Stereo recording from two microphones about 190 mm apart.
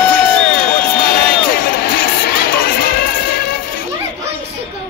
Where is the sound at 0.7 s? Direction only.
50° left (ahead or behind).